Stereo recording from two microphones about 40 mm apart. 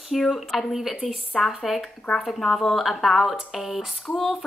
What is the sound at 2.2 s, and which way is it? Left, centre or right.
Speech, centre.